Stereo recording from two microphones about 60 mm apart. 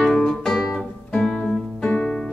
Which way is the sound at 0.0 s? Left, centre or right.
Centre.